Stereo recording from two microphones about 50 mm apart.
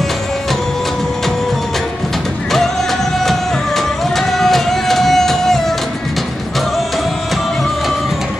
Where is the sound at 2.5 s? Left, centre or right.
Centre.